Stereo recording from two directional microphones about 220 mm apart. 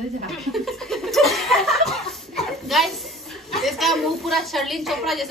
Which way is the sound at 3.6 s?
Centre (ahead or behind).